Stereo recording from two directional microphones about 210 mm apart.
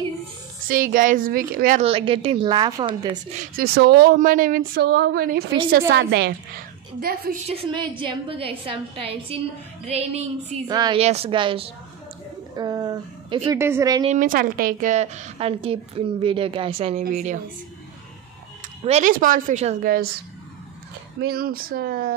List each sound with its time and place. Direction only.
0.7 s a woman's voice: 40° right (ahead or behind)
1.8 s a woman's voice: 25° right (ahead or behind)
3.3 s speech: 45° right (ahead or behind)
7.4 s a woman's voice: 25° right (ahead or behind)
14.0 s a woman's voice: 40° right (ahead or behind)
18.9 s a woman's voice: 35° right (ahead or behind)
21.2 s speech: 45° right (ahead or behind)